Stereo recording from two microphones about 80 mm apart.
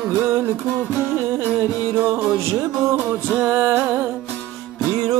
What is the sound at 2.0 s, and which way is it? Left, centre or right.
Music, right.